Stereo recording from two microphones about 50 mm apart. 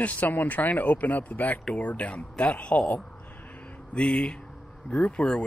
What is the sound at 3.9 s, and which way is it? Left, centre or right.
Speech, centre.